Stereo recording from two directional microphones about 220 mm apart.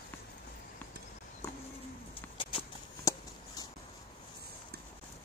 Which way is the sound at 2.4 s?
25° left (ahead or behind).